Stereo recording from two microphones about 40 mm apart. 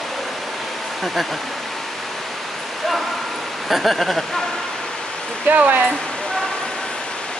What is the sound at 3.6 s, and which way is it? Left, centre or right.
Speech, centre.